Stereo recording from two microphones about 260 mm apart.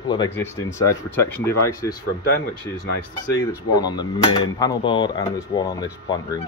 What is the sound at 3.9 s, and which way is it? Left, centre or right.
Speech, centre.